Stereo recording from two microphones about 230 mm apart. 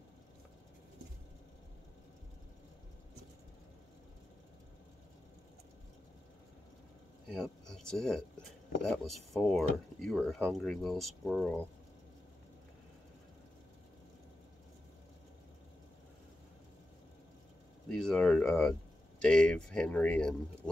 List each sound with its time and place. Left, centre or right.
7.6 s speech: centre
17.8 s speech: centre